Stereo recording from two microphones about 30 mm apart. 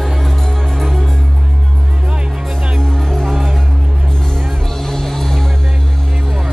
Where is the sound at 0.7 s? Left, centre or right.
Centre.